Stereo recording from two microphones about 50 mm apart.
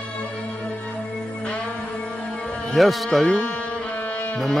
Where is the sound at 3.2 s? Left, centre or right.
Left.